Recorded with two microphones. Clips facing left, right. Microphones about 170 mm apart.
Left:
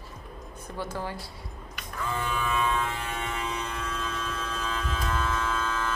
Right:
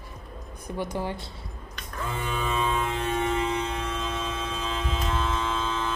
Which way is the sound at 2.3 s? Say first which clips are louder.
Right 2 dB; 25° right (ahead or behind).